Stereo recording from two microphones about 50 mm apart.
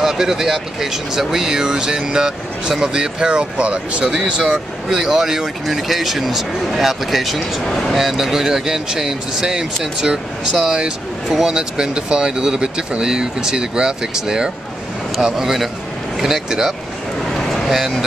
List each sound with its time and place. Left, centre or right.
0.0 s speech: centre
4.8 s speech: centre
17.3 s a sound: centre